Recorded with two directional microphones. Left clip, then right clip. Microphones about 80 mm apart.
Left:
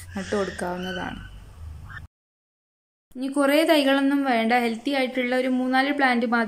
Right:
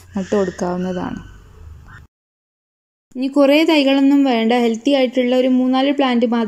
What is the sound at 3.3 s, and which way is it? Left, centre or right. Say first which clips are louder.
Speech: right 6 dB; right.